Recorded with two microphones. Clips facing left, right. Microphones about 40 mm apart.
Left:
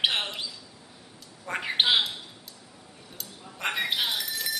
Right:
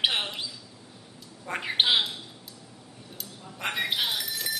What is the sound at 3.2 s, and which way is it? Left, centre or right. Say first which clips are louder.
Chink: left 2 dB; centre.